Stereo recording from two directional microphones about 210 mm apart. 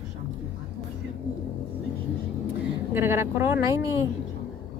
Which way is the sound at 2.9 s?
10° right (ahead or behind).